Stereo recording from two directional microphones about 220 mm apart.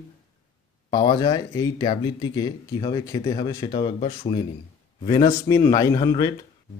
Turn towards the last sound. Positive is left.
turn(degrees=15)  # may be behind; listen again after turning